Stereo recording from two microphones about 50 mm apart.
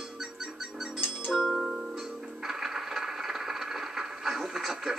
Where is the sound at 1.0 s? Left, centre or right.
Left.